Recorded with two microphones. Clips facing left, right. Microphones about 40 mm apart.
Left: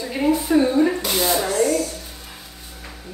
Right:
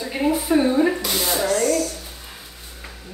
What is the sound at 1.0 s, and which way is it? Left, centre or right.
Speech, centre.